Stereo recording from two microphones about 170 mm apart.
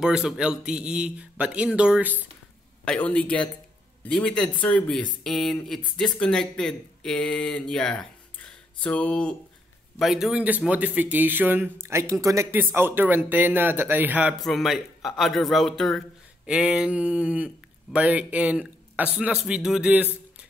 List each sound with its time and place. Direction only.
0.0 s speech: 5° right (ahead or behind)
2.8 s speech: 5° left (ahead or behind)